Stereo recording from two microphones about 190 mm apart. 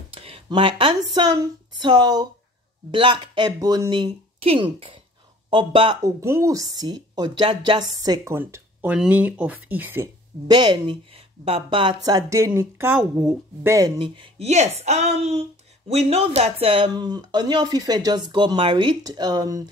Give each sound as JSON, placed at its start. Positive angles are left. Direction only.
{"t": 0.1, "sound": "speech", "side_deg": -30}
{"t": 6.2, "sound": "a woman's voice", "side_deg": -15}
{"t": 10.5, "sound": "a woman's voice", "side_deg": -25}